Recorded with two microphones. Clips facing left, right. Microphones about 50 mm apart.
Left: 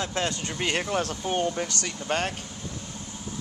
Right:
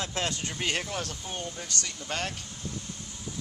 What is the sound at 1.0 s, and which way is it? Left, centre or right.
Speech, left.